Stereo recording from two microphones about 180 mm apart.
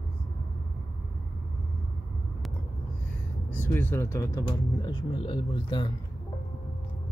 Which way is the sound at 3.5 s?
10° left (ahead or behind).